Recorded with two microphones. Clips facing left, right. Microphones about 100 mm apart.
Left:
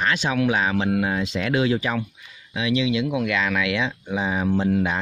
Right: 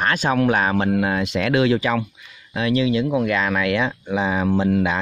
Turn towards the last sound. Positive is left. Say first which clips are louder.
# right 2 dB
turn(degrees=-90)